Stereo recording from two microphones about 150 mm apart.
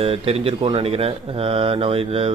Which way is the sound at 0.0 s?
40° right (ahead or behind).